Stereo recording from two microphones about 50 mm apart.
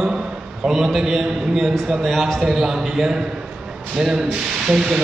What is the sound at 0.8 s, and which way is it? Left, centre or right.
A man's voice, centre.